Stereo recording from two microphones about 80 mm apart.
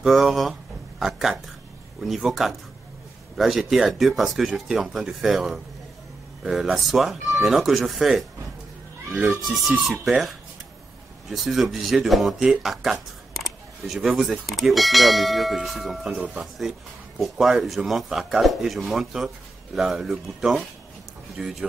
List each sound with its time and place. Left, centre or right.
0.0 s speech: centre
9.4 s speech: centre
17.2 s speech: centre